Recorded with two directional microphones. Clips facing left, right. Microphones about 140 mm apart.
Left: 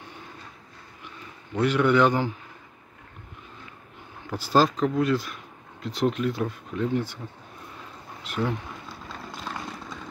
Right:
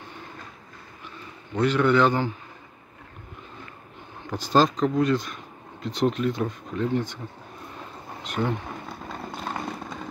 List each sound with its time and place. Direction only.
1.6 s a man's voice: 10° left (ahead or behind)
4.3 s speech: 10° left (ahead or behind)
8.2 s speech: 5° left (ahead or behind)
8.8 s vehicle: 55° right (ahead or behind)